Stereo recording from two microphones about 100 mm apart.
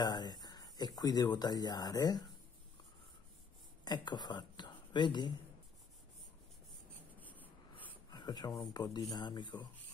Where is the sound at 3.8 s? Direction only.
45° left (ahead or behind).